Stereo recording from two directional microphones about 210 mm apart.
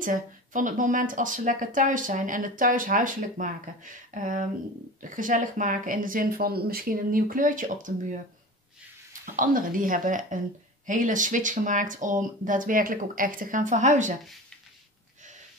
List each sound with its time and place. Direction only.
0.0 s speech: 40° right (ahead or behind)
9.2 s speech: 40° right (ahead or behind)